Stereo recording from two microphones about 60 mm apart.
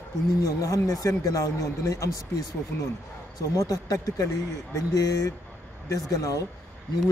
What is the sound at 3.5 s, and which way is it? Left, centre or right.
Speech, left.